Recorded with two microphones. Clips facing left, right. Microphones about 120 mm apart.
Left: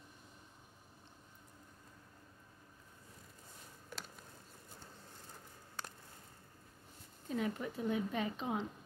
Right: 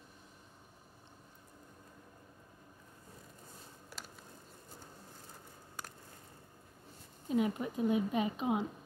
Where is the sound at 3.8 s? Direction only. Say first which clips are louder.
Left 2 dB; 5° right (ahead or behind).